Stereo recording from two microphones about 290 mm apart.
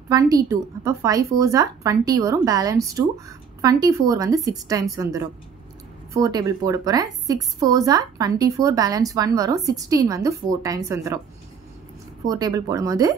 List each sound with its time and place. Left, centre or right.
0.1 s a woman's voice: centre
12.3 s a woman's voice: centre